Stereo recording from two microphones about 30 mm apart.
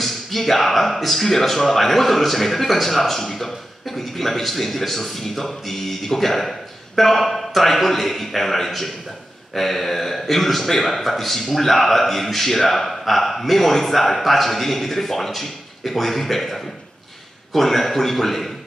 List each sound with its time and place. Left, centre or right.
0.0 s speech: centre